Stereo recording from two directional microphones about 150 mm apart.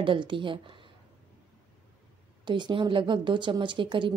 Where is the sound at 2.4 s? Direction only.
30° right (ahead or behind).